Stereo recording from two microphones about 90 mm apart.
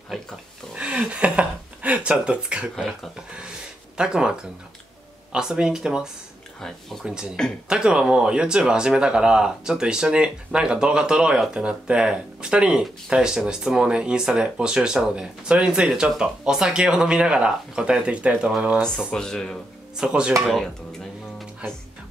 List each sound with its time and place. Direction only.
0.7 s a sound: 10° right (ahead or behind)
5.3 s speech: 10° right (ahead or behind)
6.6 s speech: 5° left (ahead or behind)
7.1 s speech: 10° right (ahead or behind)
18.8 s speech: 5° left (ahead or behind)
20.0 s speech: 10° right (ahead or behind)
20.4 s speech: centre (ahead or behind)